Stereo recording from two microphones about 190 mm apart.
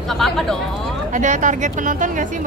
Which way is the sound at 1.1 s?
40° right (ahead or behind).